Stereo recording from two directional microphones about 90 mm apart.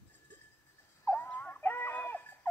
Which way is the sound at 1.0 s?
25° left (ahead or behind).